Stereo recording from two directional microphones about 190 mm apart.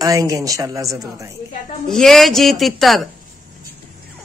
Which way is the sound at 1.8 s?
Centre (ahead or behind).